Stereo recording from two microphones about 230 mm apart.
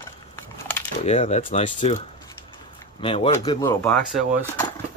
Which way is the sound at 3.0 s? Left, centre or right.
Left.